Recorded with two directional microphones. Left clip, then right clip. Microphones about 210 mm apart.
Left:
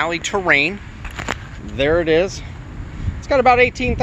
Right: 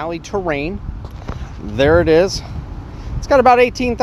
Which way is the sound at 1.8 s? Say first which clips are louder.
Right 4 dB; 35° right (ahead or behind).